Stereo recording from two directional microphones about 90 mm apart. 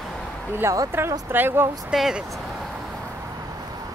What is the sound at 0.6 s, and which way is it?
Speech, 40° right (ahead or behind).